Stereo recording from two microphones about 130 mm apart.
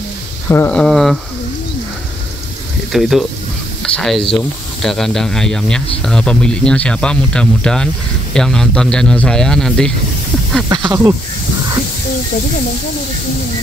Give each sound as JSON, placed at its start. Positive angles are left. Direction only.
{"t": 0.5, "sound": "speech", "side_deg": 20}
{"t": 0.7, "sound": "speech", "side_deg": 5}
{"t": 2.9, "sound": "speech", "side_deg": 0}
{"t": 3.8, "sound": "sizzle", "side_deg": 5}
{"t": 4.8, "sound": "speech", "side_deg": 5}
{"t": 10.7, "sound": "speech", "side_deg": -35}